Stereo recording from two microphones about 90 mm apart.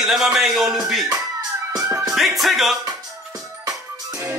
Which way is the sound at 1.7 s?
40° right (ahead or behind).